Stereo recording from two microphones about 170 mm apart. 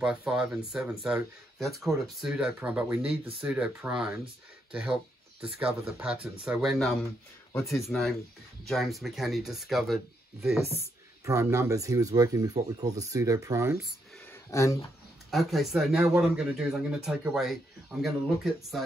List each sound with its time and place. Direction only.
0.0 s speech: 5° right (ahead or behind)
11.2 s speech: 15° right (ahead or behind)
14.3 s a sound: 15° left (ahead or behind)
15.3 s speech: centre (ahead or behind)